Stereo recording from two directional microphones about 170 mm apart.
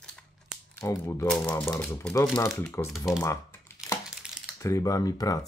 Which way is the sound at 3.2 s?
15° left (ahead or behind).